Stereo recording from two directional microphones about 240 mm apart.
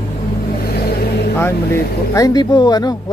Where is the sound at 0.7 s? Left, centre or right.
Left.